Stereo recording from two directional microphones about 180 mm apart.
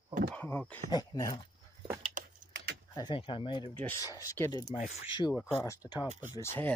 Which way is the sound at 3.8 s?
10° left (ahead or behind).